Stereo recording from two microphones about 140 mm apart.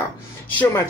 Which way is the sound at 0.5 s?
15° left (ahead or behind).